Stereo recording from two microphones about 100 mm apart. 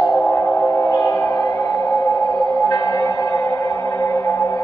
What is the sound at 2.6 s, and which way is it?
Music, 30° left (ahead or behind).